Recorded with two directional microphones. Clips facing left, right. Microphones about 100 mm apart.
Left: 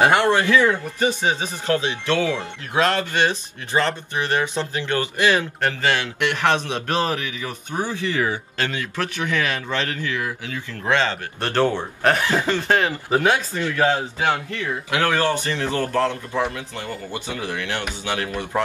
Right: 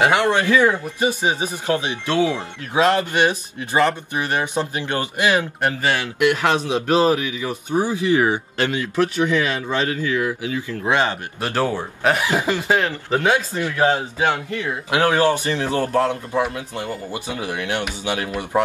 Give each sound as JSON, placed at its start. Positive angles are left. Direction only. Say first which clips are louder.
{"t": 0.3, "sound": "speech", "louder": "right 1 dB", "side_deg": -15}
{"t": 13.3, "sound": "speech", "louder": "right 1 dB", "side_deg": -20}